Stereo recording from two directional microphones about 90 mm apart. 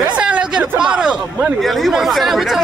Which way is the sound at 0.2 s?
10° right (ahead or behind).